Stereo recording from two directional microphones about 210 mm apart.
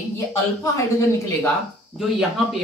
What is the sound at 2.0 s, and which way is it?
Speech, centre (ahead or behind).